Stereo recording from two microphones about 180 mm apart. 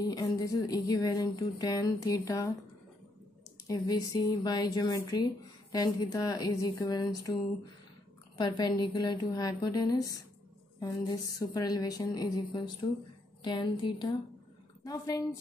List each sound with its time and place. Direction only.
0.0 s speech: 20° left (ahead or behind)
3.6 s speech: 20° left (ahead or behind)
8.4 s speech: 25° left (ahead or behind)